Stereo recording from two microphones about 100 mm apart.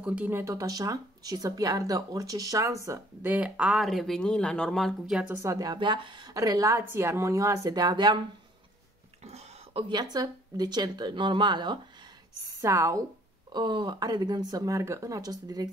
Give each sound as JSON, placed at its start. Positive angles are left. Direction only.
{"t": 0.0, "sound": "speech", "side_deg": -10}
{"t": 0.3, "sound": "speech", "side_deg": -25}
{"t": 3.3, "sound": "speech", "side_deg": -15}
{"t": 5.3, "sound": "speech", "side_deg": -30}
{"t": 5.8, "sound": "speech", "side_deg": -55}
{"t": 6.3, "sound": "speech", "side_deg": -35}
{"t": 9.2, "sound": "a sound", "side_deg": -90}
{"t": 9.8, "sound": "speech", "side_deg": -45}
{"t": 12.4, "sound": "a woman's voice", "side_deg": -35}
{"t": 13.5, "sound": "speech", "side_deg": -50}